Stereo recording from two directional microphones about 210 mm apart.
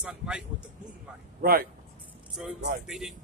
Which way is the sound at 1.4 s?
45° right (ahead or behind).